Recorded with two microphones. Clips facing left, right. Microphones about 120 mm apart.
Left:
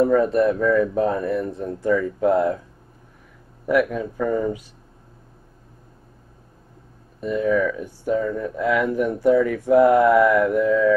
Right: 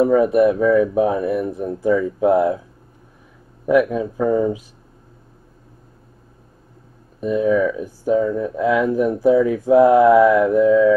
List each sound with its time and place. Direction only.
0.0 s speech: 10° right (ahead or behind)
3.8 s speech: 15° right (ahead or behind)
7.2 s speech: 15° right (ahead or behind)